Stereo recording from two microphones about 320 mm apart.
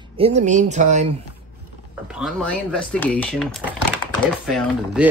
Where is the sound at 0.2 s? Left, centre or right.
Right.